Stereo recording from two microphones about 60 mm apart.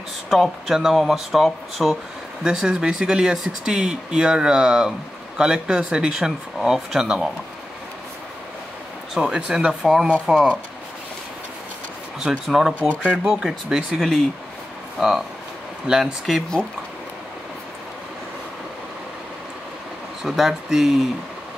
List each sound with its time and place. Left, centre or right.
0.3 s speech: centre
9.3 s speech: centre
12.3 s speech: centre
12.7 s speech: left
13.3 s speech: centre
20.2 s speech: centre